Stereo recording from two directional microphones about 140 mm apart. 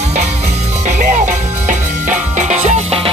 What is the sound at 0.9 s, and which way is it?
Music, 60° right (ahead or behind).